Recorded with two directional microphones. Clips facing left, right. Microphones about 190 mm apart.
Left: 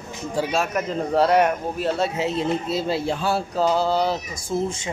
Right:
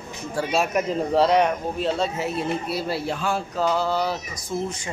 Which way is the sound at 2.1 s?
20° left (ahead or behind).